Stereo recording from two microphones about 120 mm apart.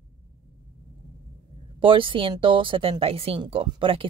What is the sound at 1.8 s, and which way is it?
Speech, 45° right (ahead or behind).